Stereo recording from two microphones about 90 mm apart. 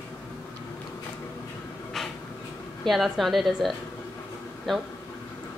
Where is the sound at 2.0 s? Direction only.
5° left (ahead or behind).